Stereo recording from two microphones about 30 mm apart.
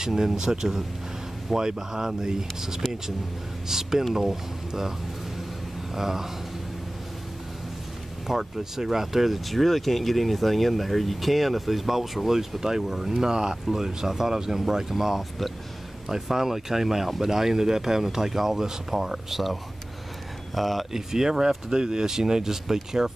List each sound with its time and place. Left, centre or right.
0.0 s speech: centre
5.9 s speech: centre
8.3 s speech: centre
13.3 s speech: right; by 20.8 s centre
20.9 s speech: centre